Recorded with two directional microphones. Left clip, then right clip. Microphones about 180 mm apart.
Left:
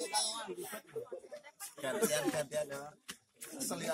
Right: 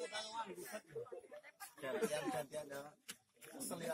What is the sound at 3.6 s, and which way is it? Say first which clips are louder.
Speech: left 6 dB; 30° left (ahead or behind).